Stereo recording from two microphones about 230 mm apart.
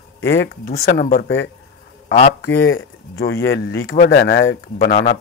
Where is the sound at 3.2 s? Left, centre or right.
Left.